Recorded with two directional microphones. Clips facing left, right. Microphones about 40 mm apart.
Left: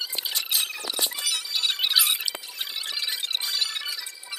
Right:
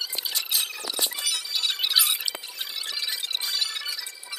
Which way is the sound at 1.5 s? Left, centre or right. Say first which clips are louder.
Left 1 dB; left.